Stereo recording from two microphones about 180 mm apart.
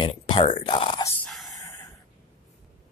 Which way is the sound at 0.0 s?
25° left (ahead or behind).